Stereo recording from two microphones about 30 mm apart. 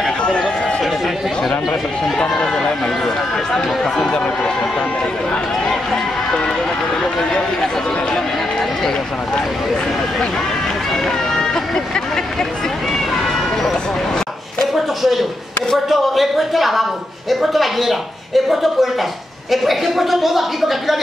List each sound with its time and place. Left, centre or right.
0.2 s run: left
2.1 s speech: left
3.5 s speech: left
7.3 s speech: left
11.1 s a sound: centre
13.1 s vehicle: centre
14.7 s a sound: centre
15.9 s a man's voice: centre